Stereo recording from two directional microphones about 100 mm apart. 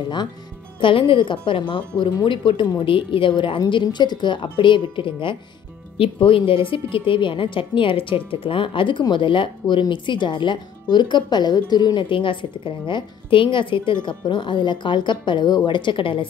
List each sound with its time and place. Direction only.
0.7 s a woman's voice: 55° left (ahead or behind)